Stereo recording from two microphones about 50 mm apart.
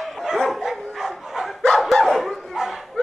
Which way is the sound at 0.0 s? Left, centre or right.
Centre.